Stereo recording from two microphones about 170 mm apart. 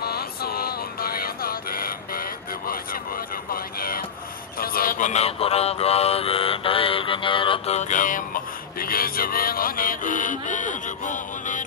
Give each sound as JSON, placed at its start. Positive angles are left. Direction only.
{"t": 0.0, "sound": "music", "side_deg": 65}
{"t": 4.6, "sound": "mantra", "side_deg": 60}